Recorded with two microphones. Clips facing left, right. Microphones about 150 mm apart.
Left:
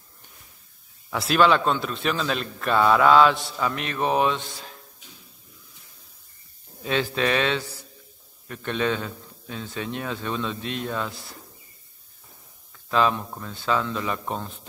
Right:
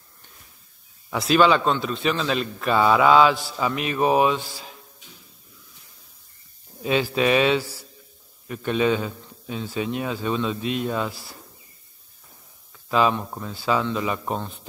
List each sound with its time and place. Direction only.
1.1 s a man's voice: centre (ahead or behind)
6.8 s a man's voice: 10° right (ahead or behind)
12.9 s a man's voice: 5° right (ahead or behind)